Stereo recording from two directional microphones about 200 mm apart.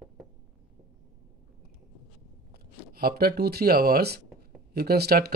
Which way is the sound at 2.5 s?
50° right (ahead or behind).